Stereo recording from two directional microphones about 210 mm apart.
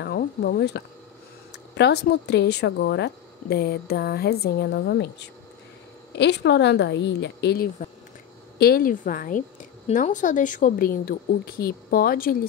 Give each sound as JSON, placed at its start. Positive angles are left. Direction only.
{"t": 0.0, "sound": "a woman's voice", "side_deg": 50}